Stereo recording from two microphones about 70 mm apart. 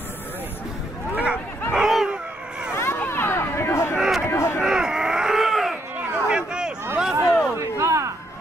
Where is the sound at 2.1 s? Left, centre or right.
Centre.